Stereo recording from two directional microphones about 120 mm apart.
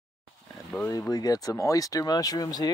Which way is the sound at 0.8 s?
30° left (ahead or behind).